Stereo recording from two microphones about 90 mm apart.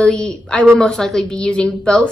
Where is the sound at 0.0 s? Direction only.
10° left (ahead or behind).